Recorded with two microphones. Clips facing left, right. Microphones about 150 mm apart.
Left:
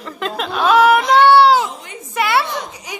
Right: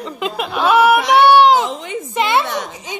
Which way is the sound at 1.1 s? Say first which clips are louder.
Right 1 dB; 15° right (ahead or behind).